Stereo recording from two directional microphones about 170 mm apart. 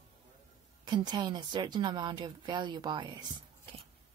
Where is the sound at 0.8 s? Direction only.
25° right (ahead or behind).